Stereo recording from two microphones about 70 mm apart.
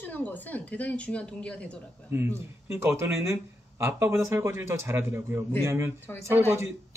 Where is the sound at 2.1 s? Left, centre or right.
Right.